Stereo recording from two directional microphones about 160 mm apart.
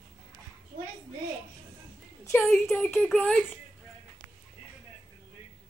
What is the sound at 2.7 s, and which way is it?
Speech, 5° left (ahead or behind).